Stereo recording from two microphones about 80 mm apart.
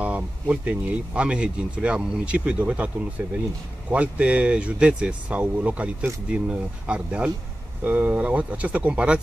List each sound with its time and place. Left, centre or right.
0.0 s speech: centre